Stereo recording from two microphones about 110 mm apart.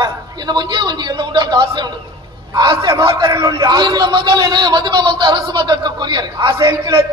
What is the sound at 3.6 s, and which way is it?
A woman's voice, 45° right (ahead or behind).